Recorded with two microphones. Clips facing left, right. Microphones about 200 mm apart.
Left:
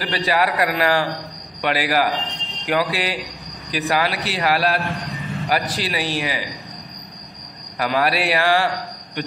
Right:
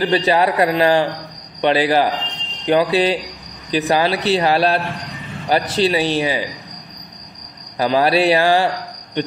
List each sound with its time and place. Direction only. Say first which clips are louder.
0.0 s speech: right 5 dB; 25° right (ahead or behind)
7.8 s a man's voice: right 5 dB; 25° right (ahead or behind)